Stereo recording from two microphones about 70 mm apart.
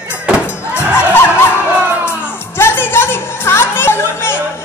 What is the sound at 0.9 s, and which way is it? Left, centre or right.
Music, left.